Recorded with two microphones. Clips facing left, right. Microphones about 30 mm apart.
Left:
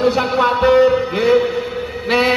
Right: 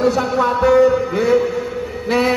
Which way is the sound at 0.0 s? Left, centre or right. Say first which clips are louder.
Left 1 dB; left.